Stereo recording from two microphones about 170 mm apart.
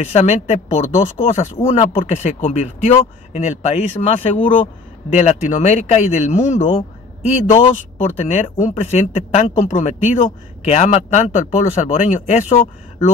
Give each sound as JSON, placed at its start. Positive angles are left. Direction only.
{"t": 0.0, "sound": "speech", "side_deg": 40}